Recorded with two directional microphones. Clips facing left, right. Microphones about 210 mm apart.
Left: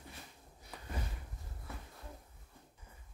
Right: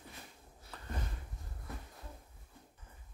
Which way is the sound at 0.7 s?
10° left (ahead or behind).